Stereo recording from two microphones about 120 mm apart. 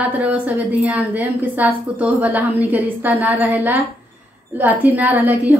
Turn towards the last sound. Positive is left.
turn(degrees=-15)  # may be behind; listen again after turning